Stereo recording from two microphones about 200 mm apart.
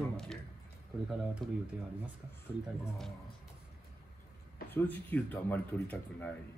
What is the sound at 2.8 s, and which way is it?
Speech, centre (ahead or behind).